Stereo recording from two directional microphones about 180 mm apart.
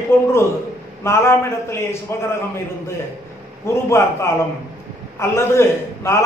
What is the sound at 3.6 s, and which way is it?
A man's voice, 15° left (ahead or behind).